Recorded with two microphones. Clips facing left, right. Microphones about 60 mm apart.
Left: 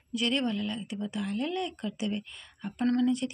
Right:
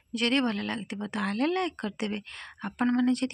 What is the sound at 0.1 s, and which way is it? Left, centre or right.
A woman's voice, right.